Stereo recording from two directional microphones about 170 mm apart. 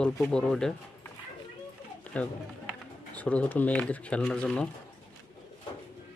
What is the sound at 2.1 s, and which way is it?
Speech, 10° left (ahead or behind).